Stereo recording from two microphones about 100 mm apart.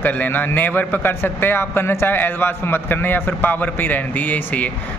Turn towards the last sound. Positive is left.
turn(degrees=15)  # may be behind; listen again after turning